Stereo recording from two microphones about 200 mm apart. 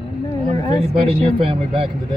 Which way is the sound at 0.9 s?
30° right (ahead or behind).